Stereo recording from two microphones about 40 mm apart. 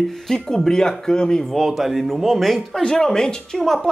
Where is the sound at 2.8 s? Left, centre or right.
Centre.